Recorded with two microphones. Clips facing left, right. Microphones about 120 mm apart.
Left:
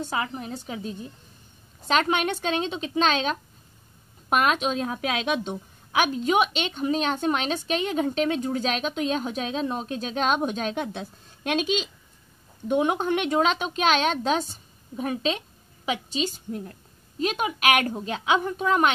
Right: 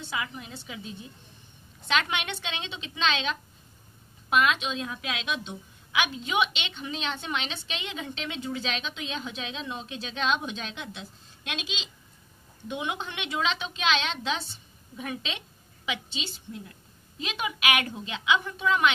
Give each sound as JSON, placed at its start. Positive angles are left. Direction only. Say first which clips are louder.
{"t": 0.0, "sound": "a woman's voice", "louder": "left 6 dB", "side_deg": 40}